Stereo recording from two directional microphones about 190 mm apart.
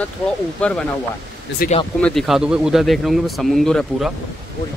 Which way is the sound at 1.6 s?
50° left (ahead or behind).